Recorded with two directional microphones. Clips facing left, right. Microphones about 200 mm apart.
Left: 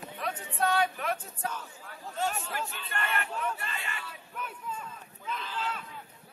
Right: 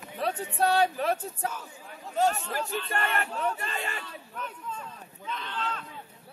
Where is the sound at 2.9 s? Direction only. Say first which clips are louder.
Right 2 dB; 40° right (ahead or behind).